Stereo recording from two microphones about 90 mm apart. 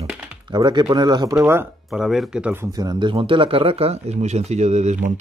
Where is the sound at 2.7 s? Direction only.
45° right (ahead or behind); by 3.9 s 90° right.